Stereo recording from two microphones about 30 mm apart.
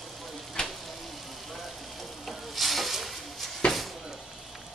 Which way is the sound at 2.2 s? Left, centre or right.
Centre.